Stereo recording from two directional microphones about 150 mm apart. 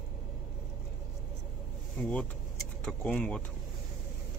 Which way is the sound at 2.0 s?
5° left (ahead or behind).